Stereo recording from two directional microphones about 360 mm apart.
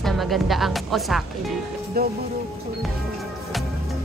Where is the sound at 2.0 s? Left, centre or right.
Right.